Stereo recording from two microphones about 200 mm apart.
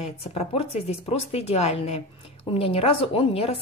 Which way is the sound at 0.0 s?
30° left (ahead or behind).